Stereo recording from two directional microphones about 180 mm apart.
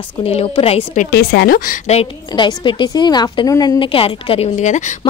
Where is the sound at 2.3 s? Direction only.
25° left (ahead or behind); by 5.0 s 40° left (ahead or behind).